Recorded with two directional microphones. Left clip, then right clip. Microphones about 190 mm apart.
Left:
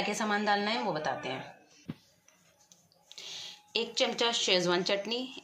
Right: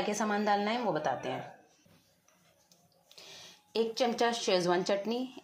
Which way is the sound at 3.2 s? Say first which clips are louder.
Left 8 dB; 35° right (ahead or behind).